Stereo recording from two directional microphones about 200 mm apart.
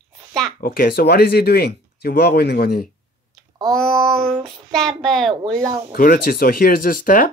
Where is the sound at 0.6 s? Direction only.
45° left (ahead or behind).